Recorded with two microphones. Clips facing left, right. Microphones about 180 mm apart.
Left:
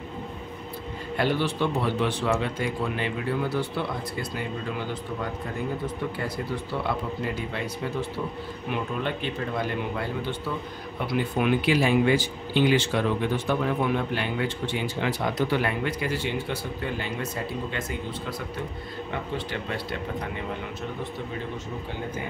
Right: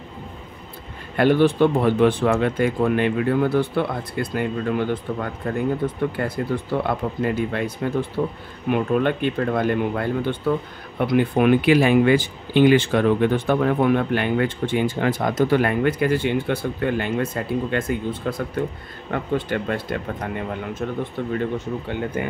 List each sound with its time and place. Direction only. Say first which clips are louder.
1.1 s speech: right 9 dB; 55° right (ahead or behind)